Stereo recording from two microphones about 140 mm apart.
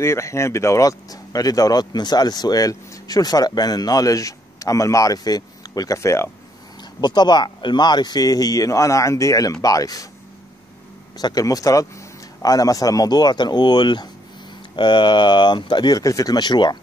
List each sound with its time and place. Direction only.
0.0 s speech: 20° left (ahead or behind)
7.0 s speech: 30° left (ahead or behind)
11.1 s speech: 25° left (ahead or behind)